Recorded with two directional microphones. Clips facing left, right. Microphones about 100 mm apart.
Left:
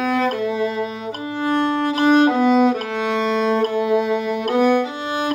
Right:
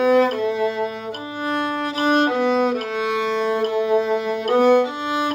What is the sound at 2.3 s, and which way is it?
Music, centre (ahead or behind).